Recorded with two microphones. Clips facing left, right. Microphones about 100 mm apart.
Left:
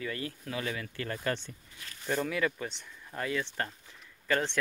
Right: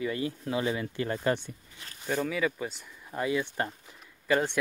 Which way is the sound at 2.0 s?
5° right (ahead or behind).